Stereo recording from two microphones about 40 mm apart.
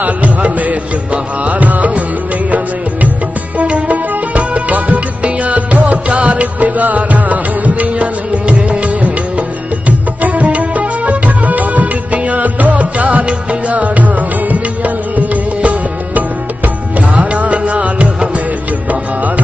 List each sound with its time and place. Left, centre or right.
0.0 s music: right
3.5 s music: right
13.2 s music: right